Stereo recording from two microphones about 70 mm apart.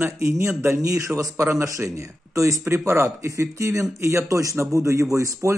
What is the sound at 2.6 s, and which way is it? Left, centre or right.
Speech, right.